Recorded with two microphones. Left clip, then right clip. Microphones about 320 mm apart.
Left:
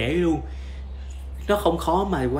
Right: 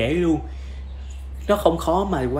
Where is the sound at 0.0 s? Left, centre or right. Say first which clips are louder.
Right 2 dB; centre.